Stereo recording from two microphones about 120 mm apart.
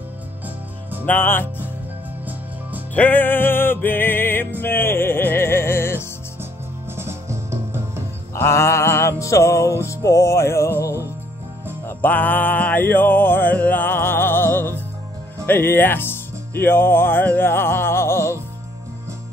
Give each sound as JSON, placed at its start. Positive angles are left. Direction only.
{"t": 1.0, "sound": "music", "side_deg": 15}
{"t": 2.9, "sound": "music", "side_deg": 15}
{"t": 7.0, "sound": "music", "side_deg": -20}
{"t": 8.4, "sound": "music", "side_deg": 25}
{"t": 12.0, "sound": "music", "side_deg": 15}
{"t": 15.4, "sound": "speech", "side_deg": 20}